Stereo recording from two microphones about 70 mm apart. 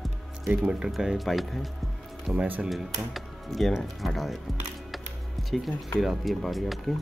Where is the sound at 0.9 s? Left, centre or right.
Centre.